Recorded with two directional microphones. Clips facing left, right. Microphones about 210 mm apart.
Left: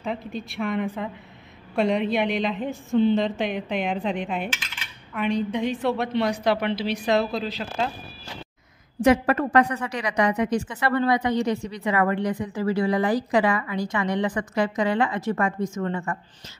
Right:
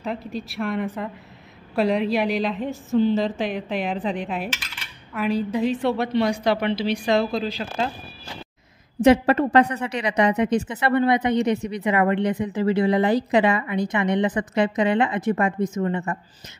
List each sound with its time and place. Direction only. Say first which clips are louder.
0.0 s a woman's voice: right 1 dB; centre (ahead or behind)
9.0 s a woman's voice: right 3 dB; 25° right (ahead or behind)